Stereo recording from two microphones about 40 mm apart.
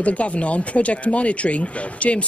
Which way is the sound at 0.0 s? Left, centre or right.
Left.